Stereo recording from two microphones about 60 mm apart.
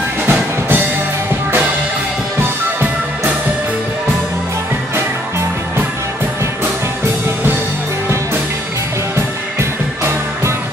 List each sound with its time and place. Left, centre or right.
0.3 s music: right
9.6 s music: right